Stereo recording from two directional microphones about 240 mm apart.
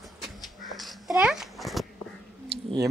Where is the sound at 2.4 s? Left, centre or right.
Centre.